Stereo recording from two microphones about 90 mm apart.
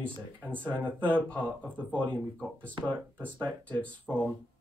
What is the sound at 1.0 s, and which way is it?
Speech, 15° left (ahead or behind).